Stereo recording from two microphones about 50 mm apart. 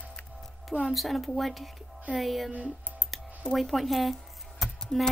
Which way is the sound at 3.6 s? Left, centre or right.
Centre.